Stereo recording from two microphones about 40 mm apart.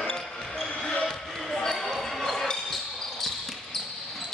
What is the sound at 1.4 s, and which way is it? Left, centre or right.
Basketball bounce, centre.